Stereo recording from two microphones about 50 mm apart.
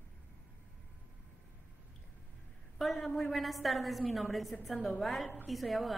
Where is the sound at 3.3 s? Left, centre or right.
Centre.